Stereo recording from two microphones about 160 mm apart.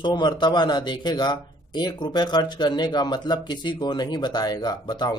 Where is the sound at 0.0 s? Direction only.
25° left (ahead or behind).